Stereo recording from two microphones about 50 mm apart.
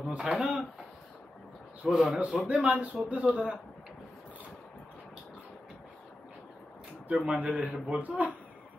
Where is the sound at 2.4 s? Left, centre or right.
Right.